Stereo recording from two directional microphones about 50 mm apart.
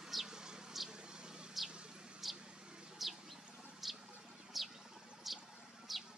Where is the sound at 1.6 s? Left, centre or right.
Centre.